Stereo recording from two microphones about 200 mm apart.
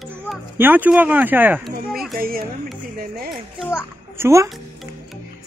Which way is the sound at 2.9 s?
50° right (ahead or behind).